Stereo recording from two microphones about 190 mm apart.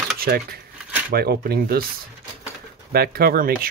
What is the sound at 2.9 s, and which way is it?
Speech, 50° right (ahead or behind).